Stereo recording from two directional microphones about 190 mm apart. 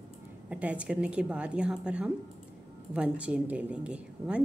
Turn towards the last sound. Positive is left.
turn(degrees=-5)  # may be behind; listen again after turning